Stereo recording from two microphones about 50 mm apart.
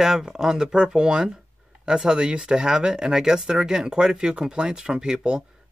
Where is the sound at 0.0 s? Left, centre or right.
Centre.